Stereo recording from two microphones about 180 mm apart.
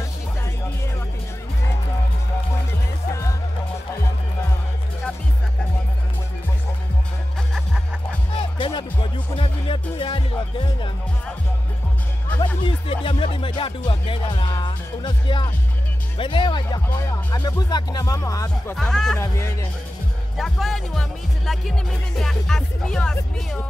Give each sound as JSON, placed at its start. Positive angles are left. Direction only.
{"t": 3.1, "sound": "music", "side_deg": 15}
{"t": 8.4, "sound": "music", "side_deg": 30}
{"t": 12.6, "sound": "music", "side_deg": 30}
{"t": 16.2, "sound": "speech", "side_deg": 25}
{"t": 18.8, "sound": "speech", "side_deg": 0}
{"t": 19.1, "sound": "speech", "side_deg": 15}
{"t": 20.3, "sound": "speech", "side_deg": 0}